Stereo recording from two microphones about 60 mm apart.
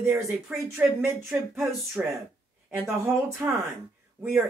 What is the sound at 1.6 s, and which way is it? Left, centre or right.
Speech, centre.